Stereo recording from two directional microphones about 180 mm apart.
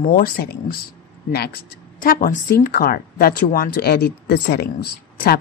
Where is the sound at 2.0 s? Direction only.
50° left (ahead or behind).